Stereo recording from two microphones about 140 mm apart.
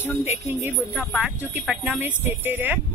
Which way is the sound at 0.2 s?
15° right (ahead or behind).